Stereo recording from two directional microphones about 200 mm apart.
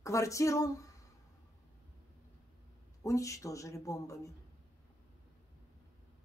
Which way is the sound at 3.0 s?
15° left (ahead or behind).